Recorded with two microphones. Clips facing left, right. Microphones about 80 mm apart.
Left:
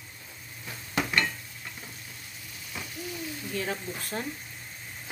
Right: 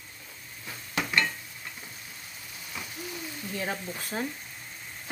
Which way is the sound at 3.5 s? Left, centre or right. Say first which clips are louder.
Even; centre.